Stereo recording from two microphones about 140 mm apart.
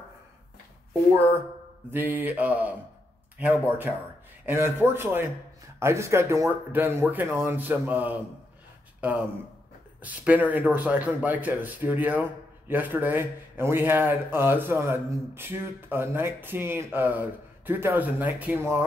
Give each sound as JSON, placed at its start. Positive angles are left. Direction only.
{"t": 1.9, "sound": "speech", "side_deg": -15}